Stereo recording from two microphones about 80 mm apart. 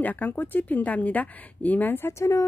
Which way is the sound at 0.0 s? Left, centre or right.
Left.